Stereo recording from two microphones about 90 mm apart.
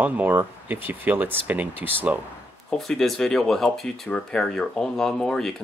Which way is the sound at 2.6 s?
5° left (ahead or behind).